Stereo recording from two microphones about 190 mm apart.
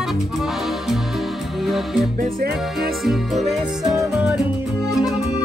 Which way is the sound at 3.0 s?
Centre (ahead or behind).